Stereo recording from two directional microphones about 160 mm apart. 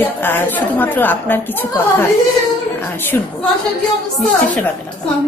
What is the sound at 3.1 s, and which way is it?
Speech, 15° left (ahead or behind).